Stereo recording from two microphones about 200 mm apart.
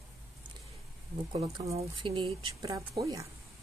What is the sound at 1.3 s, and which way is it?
Speech, 30° right (ahead or behind).